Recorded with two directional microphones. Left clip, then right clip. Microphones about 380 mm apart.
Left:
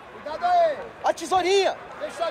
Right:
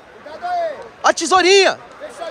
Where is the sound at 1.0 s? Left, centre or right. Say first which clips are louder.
Right 9 dB; centre.